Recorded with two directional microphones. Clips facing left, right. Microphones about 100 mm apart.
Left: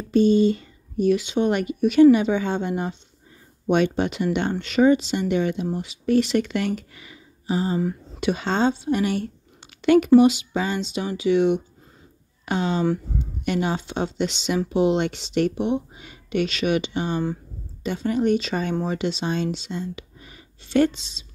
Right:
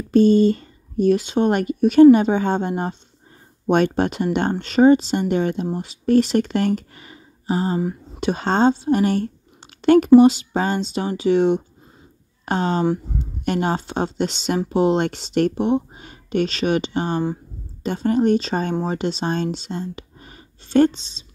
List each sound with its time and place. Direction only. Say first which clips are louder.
0.1 s speech: right 3 dB; 45° right (ahead or behind)